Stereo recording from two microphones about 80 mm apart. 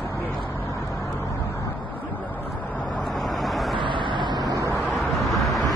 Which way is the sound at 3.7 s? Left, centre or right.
Right.